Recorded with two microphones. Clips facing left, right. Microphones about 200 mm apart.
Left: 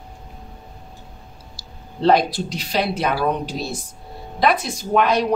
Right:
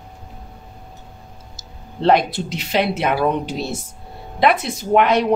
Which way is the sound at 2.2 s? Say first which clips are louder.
Right 1 dB; 25° right (ahead or behind).